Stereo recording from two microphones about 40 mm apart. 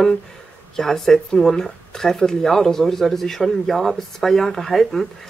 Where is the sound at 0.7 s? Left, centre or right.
Centre.